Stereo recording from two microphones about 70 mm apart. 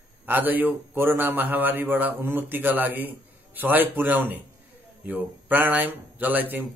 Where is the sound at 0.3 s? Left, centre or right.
Right.